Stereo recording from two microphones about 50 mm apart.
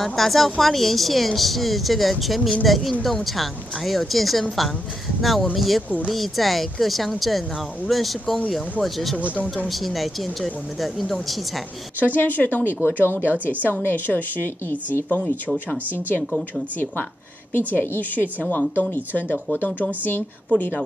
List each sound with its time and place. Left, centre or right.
0.0 s speech: centre
9.2 s speech: right
9.7 s speech: centre
12.2 s a woman's voice: left
16.3 s speech: centre
17.5 s a woman's voice: left
20.5 s speech: left